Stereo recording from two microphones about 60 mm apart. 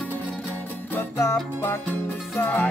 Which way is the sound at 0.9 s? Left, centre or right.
Left.